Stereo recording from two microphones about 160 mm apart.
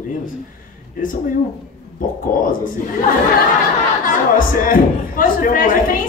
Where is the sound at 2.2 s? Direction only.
55° left (ahead or behind).